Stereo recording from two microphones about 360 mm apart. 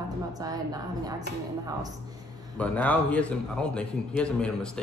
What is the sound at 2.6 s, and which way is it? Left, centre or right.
A man's voice, centre.